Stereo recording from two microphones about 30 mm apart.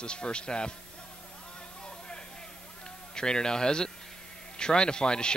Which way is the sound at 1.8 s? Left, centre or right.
Left.